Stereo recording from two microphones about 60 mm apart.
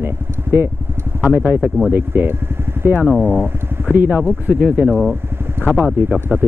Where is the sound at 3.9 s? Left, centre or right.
Right.